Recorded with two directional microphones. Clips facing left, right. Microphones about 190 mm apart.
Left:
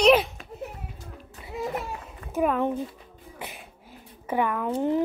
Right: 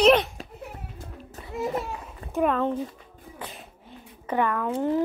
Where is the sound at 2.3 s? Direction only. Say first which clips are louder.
Right 1 dB; 5° left (ahead or behind).